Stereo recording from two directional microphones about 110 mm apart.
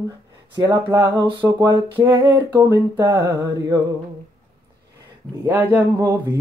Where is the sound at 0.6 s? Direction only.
35° right (ahead or behind).